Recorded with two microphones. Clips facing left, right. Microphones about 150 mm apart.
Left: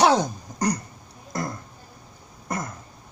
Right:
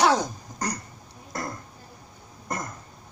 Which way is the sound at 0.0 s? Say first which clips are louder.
Left 3 dB; 20° left (ahead or behind).